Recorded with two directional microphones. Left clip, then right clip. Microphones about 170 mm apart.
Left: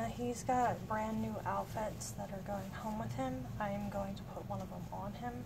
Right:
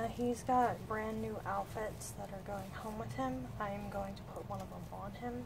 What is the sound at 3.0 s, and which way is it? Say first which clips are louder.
Speech: right 3 dB; 25° right (ahead or behind).